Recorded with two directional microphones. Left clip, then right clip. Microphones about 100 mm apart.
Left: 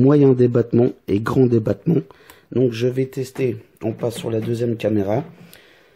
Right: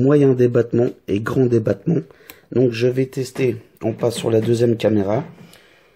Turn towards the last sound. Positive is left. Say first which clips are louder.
# even
turn(degrees=60)  # may be behind; listen again after turning